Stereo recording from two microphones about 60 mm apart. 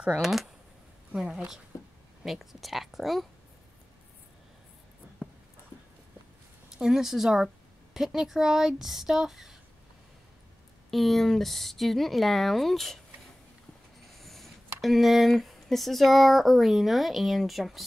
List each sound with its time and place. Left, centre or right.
0.2 s speech: centre
6.8 s speech: centre
10.9 s speech: centre
14.1 s speech: centre